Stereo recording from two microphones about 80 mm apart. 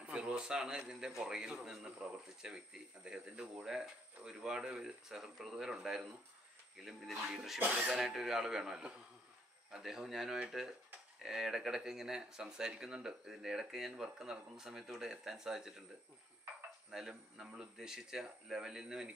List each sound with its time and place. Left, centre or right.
0.0 s speech: centre
7.6 s speech: centre
7.9 s speech: centre
16.9 s speech: centre